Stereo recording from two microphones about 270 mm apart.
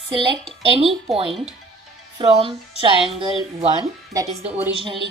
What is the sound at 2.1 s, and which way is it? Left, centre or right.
Speech, centre.